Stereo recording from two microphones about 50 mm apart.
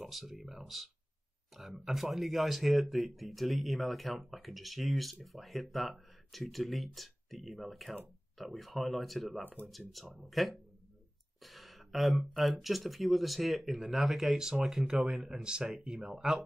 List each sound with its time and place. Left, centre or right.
0.0 s speech: centre
9.4 s speech: left
9.7 s speech: centre